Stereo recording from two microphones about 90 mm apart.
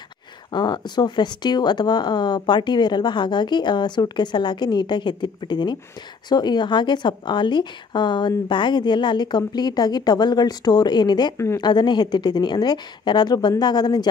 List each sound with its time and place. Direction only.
0.5 s a woman's voice: 55° left (ahead or behind)
11.3 s speech: 30° left (ahead or behind)
11.6 s a woman's voice: 55° left (ahead or behind)